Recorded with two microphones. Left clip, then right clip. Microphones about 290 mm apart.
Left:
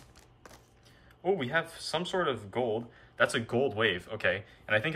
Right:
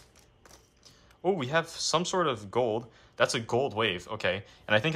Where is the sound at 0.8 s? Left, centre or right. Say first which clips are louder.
Right 2 dB; centre.